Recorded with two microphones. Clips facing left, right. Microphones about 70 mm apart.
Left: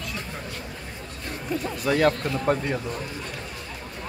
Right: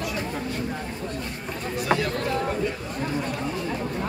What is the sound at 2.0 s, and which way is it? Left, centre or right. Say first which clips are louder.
Speech: left 3 dB; left.